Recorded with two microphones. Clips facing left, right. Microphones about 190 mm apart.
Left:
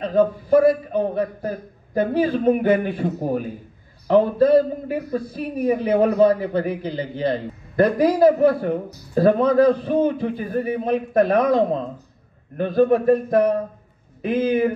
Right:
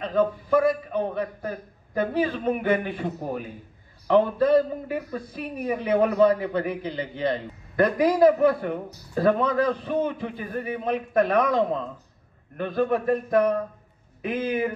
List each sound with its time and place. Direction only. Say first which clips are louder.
0.0 s speech: left 5 dB; 35° left (ahead or behind)